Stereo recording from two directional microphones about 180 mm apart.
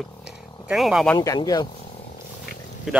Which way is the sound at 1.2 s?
20° left (ahead or behind).